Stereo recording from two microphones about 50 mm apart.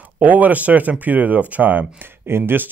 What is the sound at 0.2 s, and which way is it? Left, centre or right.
Speech, right.